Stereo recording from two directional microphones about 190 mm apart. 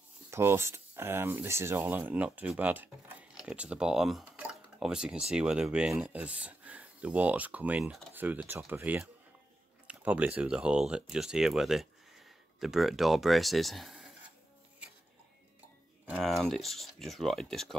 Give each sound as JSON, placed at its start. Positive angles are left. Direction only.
{"t": 0.3, "sound": "speech", "side_deg": -15}
{"t": 16.1, "sound": "speech", "side_deg": 0}